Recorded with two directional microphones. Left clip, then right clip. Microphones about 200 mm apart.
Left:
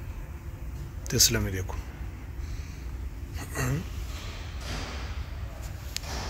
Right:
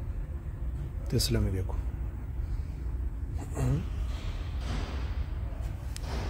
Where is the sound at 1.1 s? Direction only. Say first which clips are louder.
Left 7 dB; centre (ahead or behind).